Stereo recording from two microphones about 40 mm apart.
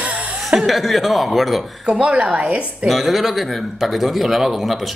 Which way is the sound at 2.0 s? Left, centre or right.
Right.